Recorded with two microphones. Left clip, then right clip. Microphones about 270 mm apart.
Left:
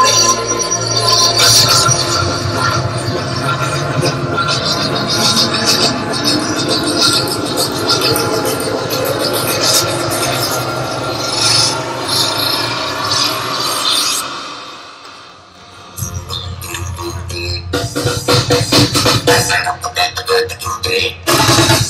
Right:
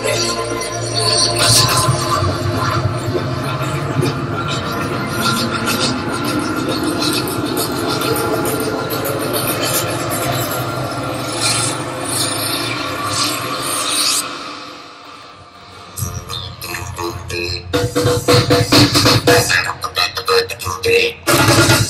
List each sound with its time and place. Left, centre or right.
0.0 s music: centre
11.1 s rub: left
18.2 s music: centre